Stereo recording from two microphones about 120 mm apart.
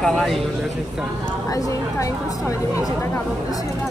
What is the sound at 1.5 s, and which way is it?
Speech, 30° left (ahead or behind).